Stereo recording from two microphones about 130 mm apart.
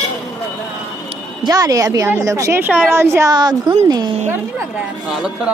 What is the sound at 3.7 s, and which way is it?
Speech, 40° right (ahead or behind).